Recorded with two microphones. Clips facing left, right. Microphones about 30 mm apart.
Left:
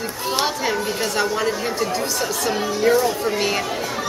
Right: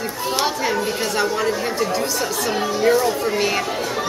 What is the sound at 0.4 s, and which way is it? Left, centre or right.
Speech, centre.